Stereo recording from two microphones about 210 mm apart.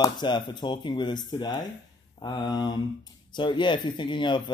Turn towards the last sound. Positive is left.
turn(degrees=20)  # may be behind; listen again after turning